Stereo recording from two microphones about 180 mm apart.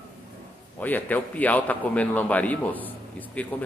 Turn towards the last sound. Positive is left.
turn(degrees=5)  # may be behind; listen again after turning